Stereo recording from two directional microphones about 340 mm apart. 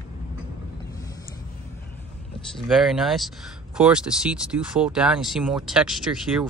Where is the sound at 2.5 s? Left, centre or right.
Centre.